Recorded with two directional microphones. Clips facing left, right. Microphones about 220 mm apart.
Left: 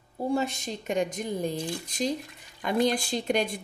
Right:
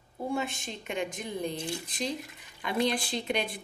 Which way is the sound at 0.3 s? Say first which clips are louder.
Left 5 dB; 40° left (ahead or behind).